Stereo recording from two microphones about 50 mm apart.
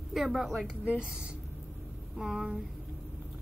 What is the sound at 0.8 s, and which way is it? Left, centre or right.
Speech, centre.